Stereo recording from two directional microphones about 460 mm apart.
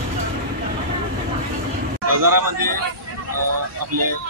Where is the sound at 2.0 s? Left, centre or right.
Right.